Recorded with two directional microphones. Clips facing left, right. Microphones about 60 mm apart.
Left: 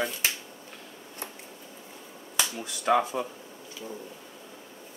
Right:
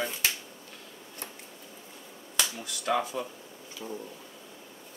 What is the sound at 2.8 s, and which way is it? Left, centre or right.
Speech, left.